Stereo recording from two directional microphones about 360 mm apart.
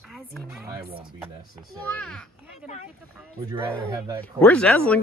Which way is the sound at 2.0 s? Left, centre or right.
Centre.